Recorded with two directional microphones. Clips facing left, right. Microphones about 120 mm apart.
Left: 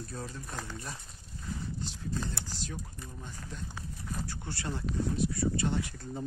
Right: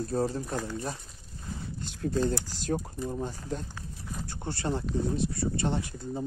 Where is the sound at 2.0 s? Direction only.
60° right (ahead or behind).